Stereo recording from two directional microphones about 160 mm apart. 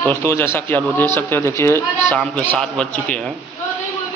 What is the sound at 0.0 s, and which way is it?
Speech, 15° left (ahead or behind).